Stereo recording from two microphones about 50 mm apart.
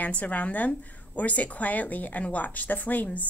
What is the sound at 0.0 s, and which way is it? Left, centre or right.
A woman's voice, left.